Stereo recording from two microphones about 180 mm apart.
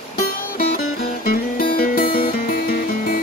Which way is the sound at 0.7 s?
55° left (ahead or behind).